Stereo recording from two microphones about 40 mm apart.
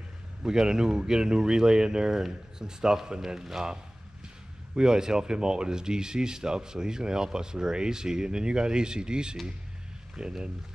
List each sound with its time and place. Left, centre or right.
0.4 s speech: centre